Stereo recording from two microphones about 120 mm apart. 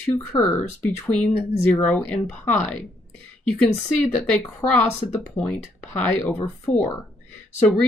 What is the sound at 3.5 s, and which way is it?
Speech, 75° left (ahead or behind).